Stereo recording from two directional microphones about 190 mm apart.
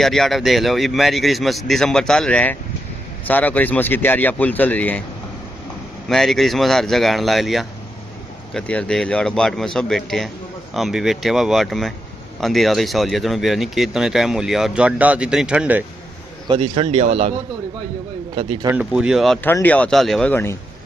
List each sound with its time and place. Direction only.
0.0 s speech: centre (ahead or behind)
6.0 s speech: centre (ahead or behind)
16.4 s speech: 30° right (ahead or behind)
18.3 s speech: 30° right (ahead or behind)
18.7 s speech: 5° right (ahead or behind); by 20.5 s 10° left (ahead or behind)